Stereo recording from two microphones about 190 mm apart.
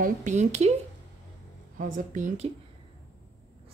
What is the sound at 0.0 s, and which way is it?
Speech, 40° right (ahead or behind).